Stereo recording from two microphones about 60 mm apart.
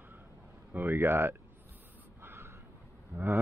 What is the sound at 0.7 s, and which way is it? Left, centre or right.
Speech, right.